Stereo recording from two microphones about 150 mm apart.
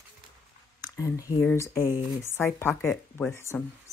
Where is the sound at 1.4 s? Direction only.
15° left (ahead or behind).